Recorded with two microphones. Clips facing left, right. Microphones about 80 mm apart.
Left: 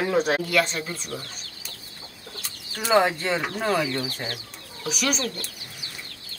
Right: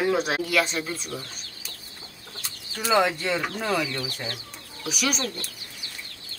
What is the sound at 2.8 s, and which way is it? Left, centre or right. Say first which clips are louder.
Speech: left 2 dB; left.